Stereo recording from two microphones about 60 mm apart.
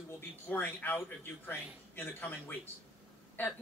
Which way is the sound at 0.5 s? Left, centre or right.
Left.